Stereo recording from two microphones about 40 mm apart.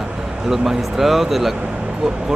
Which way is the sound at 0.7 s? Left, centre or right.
Centre.